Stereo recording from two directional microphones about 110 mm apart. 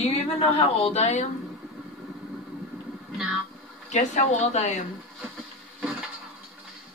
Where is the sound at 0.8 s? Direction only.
80° left.